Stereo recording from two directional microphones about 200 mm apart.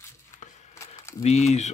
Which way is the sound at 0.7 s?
15° left (ahead or behind).